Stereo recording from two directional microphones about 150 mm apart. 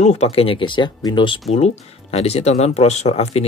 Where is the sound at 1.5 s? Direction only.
45° left (ahead or behind).